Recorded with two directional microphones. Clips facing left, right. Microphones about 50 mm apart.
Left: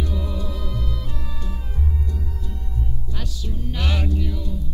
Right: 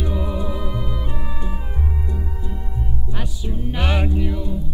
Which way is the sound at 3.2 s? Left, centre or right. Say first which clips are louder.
Right 4 dB; right.